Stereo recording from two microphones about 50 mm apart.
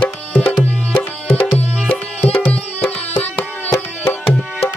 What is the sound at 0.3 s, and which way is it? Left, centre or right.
Tabla, left.